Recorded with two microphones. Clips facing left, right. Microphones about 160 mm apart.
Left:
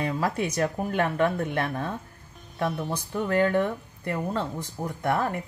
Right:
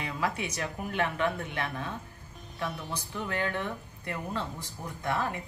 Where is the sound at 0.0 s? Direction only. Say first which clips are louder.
Left 6 dB; 45° left (ahead or behind).